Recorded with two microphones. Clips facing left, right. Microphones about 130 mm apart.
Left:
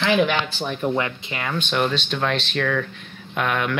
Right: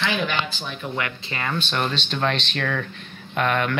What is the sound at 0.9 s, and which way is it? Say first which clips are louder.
Speech: left 4 dB; 25° left (ahead or behind).